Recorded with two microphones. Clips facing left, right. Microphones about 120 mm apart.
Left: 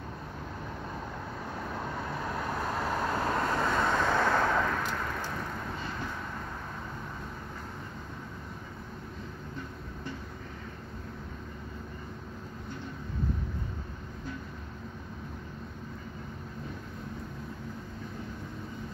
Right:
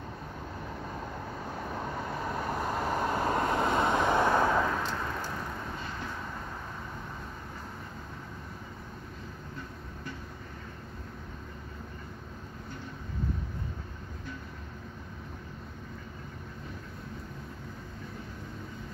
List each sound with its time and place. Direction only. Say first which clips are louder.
1.6 s vehicle: even; 10° right (ahead or behind)